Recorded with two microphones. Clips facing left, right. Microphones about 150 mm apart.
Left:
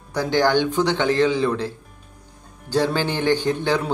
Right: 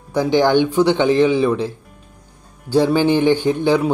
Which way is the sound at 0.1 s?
15° right (ahead or behind).